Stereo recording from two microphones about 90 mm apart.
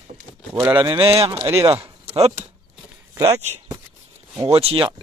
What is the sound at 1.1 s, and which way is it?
Speech, 85° right.